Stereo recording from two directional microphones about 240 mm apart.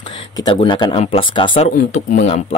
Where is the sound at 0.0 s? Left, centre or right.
Centre.